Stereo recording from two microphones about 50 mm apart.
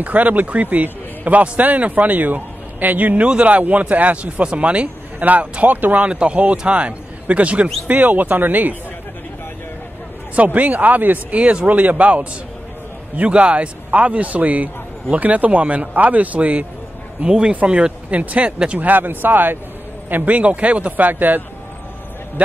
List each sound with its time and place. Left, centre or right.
0.0 s a man's voice: right
6.0 s a man's voice: right
10.3 s a man's voice: right
20.3 s speech: right